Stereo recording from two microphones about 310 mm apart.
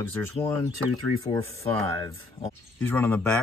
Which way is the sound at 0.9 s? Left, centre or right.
Right.